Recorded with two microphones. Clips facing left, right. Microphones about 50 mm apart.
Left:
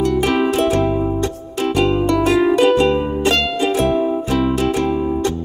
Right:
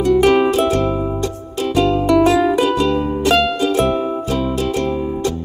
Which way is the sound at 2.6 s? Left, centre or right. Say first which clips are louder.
Left 3 dB; left.